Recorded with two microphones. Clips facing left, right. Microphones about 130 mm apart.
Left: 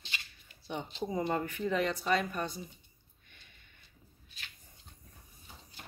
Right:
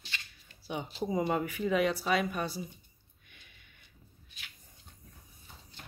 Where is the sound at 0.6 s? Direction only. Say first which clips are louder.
Right 2 dB; 5° right (ahead or behind).